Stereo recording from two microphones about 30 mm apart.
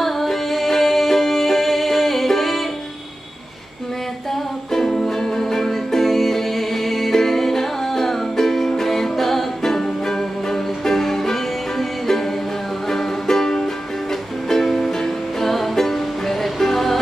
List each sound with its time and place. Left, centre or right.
0.0 s music: centre
4.7 s music: centre
12.9 s music: centre